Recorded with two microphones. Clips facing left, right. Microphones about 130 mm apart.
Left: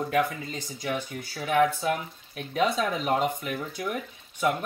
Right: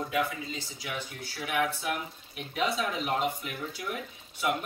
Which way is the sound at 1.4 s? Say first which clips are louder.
Left 7 dB; 40° left (ahead or behind).